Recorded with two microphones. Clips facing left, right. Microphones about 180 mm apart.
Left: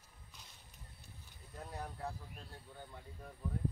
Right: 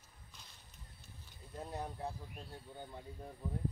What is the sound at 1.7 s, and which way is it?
Speech, 20° right (ahead or behind).